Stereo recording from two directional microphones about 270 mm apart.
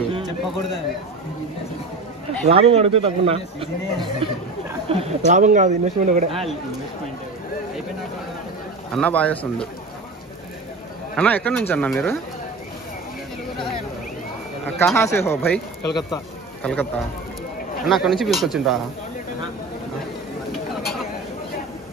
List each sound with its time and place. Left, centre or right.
2.4 s speech: right
8.9 s speech: centre
11.1 s speech: centre
14.8 s speech: centre
17.8 s speech: centre